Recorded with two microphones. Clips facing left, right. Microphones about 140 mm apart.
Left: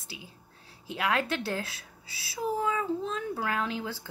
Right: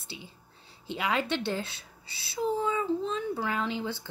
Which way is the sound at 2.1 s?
90° left.